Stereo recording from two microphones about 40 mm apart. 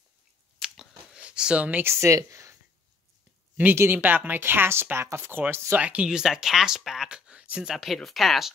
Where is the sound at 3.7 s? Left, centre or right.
Right.